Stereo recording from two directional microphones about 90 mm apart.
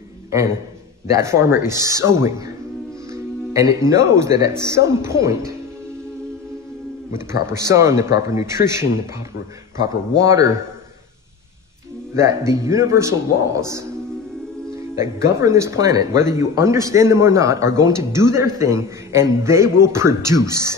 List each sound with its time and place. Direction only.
1.0 s speech: 35° right (ahead or behind)
7.1 s speech: 30° right (ahead or behind)
10.1 s speech: 35° right (ahead or behind)
12.1 s speech: 35° right (ahead or behind)
15.0 s speech: 35° right (ahead or behind)